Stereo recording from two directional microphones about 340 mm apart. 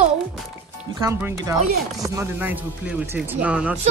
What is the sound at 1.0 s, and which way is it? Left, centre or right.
Speech, centre.